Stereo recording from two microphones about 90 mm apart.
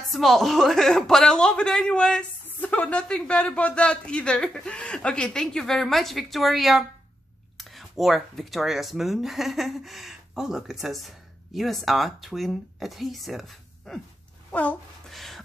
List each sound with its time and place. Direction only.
0.1 s speech: centre (ahead or behind)
14.5 s speech: 15° left (ahead or behind)
15.0 s a sound: centre (ahead or behind)